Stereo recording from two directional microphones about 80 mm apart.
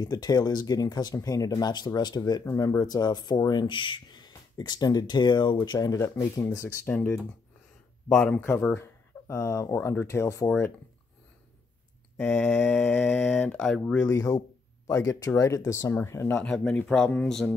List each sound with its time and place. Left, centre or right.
0.0 s speech: left
1.7 s speech: left
2.4 s speech: left
4.6 s speech: left
5.6 s speech: left
5.9 s speech: left
6.9 s speech: left
8.4 s speech: left
12.2 s speech: centre
14.0 s speech: left
15.9 s speech: left
16.3 s speech: centre